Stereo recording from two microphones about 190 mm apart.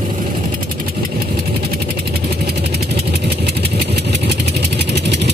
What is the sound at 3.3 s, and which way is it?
Vehicle, 55° right (ahead or behind).